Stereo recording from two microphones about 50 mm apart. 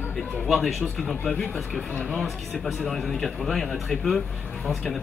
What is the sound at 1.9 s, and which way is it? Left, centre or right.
Speech, left.